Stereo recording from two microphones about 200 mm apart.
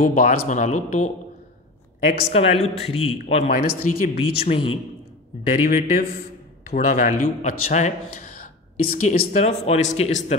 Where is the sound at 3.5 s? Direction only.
45° left (ahead or behind).